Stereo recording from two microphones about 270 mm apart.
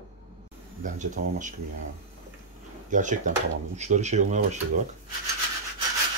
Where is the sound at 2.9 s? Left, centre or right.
Right.